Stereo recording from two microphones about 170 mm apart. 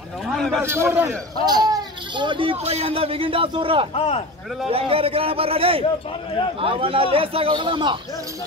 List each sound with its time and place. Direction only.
0.3 s a man's voice: 5° left (ahead or behind)
0.7 s a man's voice: 15° right (ahead or behind); by 3.9 s 30° right (ahead or behind)
3.9 s speech: 35° left (ahead or behind)
4.6 s speech: 35° right (ahead or behind)